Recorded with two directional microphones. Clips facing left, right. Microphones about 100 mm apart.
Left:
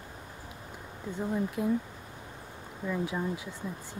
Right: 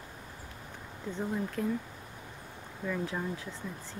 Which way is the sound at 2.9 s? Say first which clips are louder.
Left 2 dB; 15° left (ahead or behind).